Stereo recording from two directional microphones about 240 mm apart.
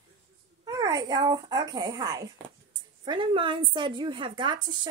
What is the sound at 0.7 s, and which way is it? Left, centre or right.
A child's voice, centre.